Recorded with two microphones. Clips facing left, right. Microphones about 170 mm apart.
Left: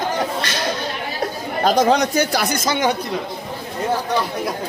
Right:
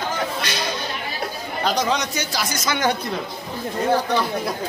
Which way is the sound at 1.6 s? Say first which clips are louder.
Left 7 dB; 50° left (ahead or behind).